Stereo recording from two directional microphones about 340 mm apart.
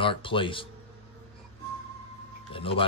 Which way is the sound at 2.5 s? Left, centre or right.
Centre.